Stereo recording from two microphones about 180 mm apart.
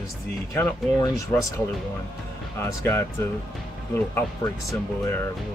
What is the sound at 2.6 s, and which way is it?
Speech, 15° left (ahead or behind).